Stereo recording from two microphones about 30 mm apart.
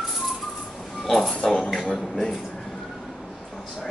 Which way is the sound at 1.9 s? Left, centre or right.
Centre.